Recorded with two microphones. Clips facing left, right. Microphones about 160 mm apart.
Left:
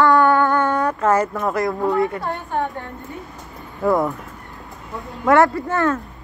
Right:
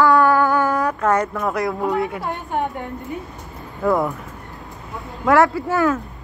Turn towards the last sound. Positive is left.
turn(degrees=0)  # may be behind; listen again after turning